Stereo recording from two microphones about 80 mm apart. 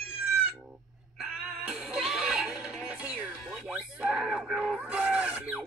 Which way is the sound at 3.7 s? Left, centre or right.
Centre.